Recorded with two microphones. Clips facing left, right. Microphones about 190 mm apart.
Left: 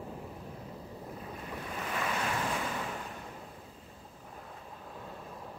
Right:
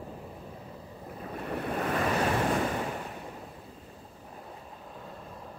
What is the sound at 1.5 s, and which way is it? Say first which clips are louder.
Waves: right 9 dB; 60° right (ahead or behind).